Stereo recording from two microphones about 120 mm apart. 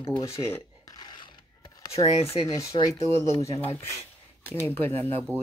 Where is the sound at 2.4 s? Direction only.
25° left (ahead or behind).